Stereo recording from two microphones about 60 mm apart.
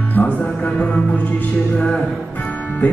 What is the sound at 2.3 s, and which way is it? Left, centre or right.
Music, left.